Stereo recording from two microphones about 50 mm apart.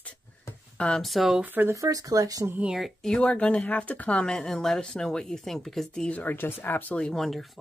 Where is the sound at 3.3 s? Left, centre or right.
Left.